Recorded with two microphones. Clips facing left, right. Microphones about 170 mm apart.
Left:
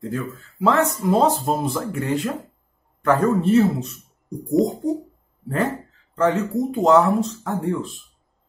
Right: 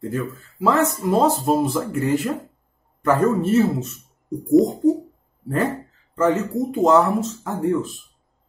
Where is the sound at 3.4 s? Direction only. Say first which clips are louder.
Left 1 dB; centre (ahead or behind).